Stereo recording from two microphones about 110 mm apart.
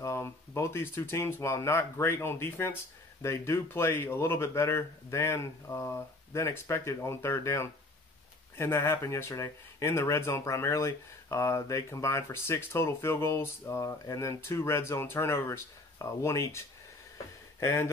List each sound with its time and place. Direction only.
0.0 s speech: 25° left (ahead or behind)